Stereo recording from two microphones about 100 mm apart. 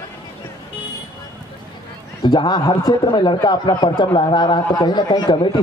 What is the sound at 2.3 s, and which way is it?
Speech, 50° left (ahead or behind).